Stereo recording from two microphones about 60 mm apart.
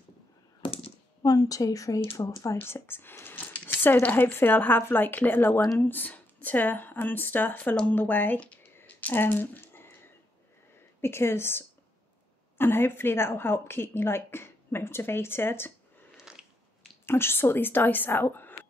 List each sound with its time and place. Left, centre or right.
1.2 s speech: left
2.9 s speech: left
4.3 s a woman's voice: left
8.7 s a sound: left
11.0 s a woman's voice: left
16.2 s biting: centre
17.0 s a woman's voice: left